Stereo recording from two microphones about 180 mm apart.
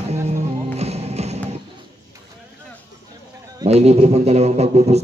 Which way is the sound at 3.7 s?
35° right (ahead or behind).